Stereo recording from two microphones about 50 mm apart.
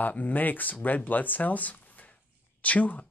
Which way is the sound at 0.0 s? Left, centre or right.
Left.